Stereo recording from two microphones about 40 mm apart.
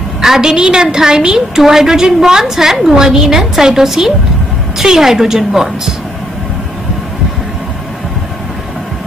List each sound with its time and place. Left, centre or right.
0.2 s a woman's voice: centre